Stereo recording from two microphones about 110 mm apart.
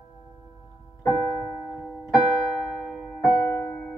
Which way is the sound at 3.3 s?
20° left (ahead or behind).